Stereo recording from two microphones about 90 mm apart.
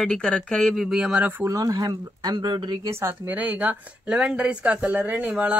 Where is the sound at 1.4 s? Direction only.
40° right (ahead or behind); by 2.8 s 55° right (ahead or behind).